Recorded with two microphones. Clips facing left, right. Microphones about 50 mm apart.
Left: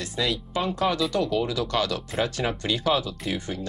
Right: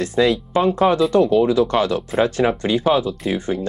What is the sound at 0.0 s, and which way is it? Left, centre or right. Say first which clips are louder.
Speech: right 11 dB; right.